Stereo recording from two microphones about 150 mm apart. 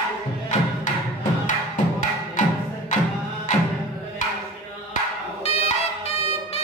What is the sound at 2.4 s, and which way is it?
Music, 60° left (ahead or behind).